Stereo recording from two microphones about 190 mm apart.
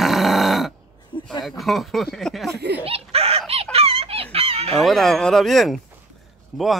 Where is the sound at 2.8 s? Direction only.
30° right (ahead or behind).